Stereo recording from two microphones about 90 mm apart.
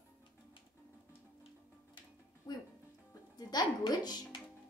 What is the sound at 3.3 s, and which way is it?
Speech, 55° left (ahead or behind).